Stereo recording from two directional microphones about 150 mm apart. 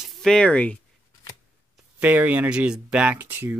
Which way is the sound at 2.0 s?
10° right (ahead or behind).